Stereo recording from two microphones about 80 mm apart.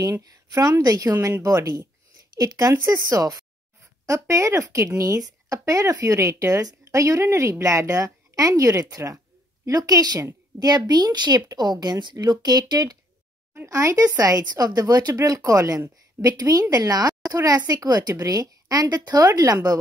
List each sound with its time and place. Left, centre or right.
0.2 s a woman's voice: right
13.7 s speech: right